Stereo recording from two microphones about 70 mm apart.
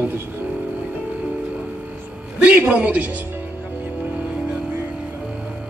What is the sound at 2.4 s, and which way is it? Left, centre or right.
Speech, centre.